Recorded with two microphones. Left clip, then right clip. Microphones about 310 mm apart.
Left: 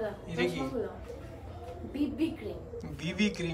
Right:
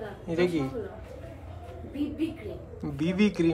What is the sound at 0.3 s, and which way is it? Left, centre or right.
Speech, centre.